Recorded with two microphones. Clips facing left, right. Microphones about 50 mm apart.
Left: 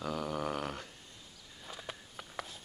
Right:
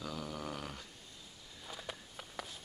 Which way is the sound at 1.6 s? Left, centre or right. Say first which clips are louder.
Left 1 dB; centre.